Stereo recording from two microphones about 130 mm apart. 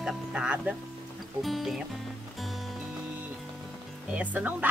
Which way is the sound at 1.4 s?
Centre (ahead or behind).